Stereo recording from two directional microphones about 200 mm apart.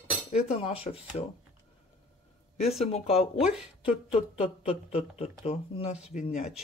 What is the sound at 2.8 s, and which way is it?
Speech, 30° left (ahead or behind).